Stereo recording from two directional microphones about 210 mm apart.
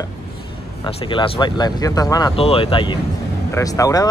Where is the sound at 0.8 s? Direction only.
25° left (ahead or behind).